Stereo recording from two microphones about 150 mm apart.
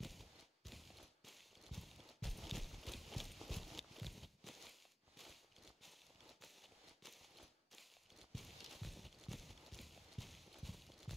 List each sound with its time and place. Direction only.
0.0 s clip-clop: centre (ahead or behind)